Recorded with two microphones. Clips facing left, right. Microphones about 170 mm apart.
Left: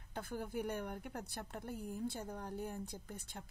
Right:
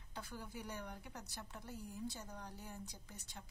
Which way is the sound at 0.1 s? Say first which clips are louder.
Left 7 dB; 55° left (ahead or behind).